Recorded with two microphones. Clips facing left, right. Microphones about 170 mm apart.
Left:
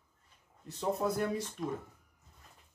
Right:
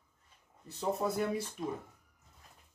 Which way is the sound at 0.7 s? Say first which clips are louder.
Left 1 dB; centre (ahead or behind).